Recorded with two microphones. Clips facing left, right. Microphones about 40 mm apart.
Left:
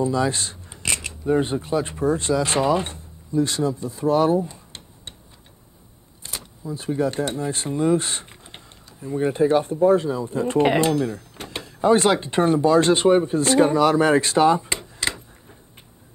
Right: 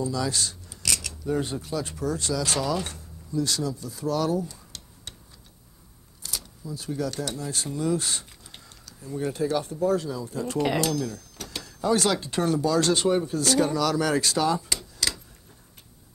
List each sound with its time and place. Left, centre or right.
0.0 s speech: left
6.2 s speech: left